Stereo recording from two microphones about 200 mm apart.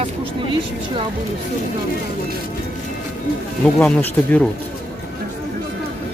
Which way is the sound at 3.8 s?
5° left (ahead or behind).